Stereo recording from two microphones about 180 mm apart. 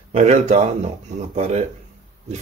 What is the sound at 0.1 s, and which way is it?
Speech, 40° right (ahead or behind).